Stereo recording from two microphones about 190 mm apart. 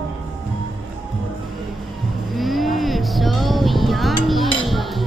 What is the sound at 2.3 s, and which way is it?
Music, centre (ahead or behind).